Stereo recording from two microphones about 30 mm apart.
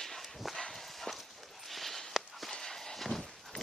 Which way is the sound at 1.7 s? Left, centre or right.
Centre.